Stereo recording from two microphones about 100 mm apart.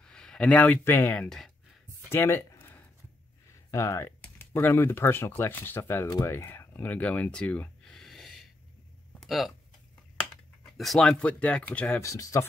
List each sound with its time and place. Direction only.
0.0 s speech: 10° left (ahead or behind)
2.0 s a sound: 25° left (ahead or behind)
3.7 s speech: 30° left (ahead or behind); by 9.5 s centre (ahead or behind)
10.6 s speech: 5° left (ahead or behind)
12.0 s speech: 35° left (ahead or behind)